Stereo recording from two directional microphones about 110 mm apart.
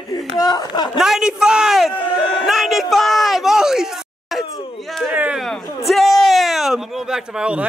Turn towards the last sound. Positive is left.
turn(degrees=-10)  # may be behind; listen again after turning